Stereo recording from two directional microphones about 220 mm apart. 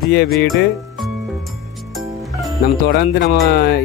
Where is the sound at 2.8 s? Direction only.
45° left (ahead or behind).